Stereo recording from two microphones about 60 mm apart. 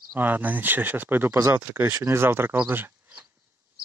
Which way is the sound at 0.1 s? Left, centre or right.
Right.